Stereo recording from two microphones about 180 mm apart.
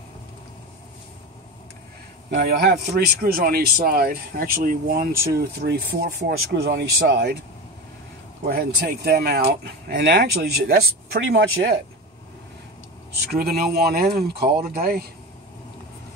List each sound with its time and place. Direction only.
2.3 s a man's voice: 60° right (ahead or behind)
8.5 s a man's voice: 60° right (ahead or behind); by 11.8 s 90° right
13.2 s a man's voice: 60° right (ahead or behind)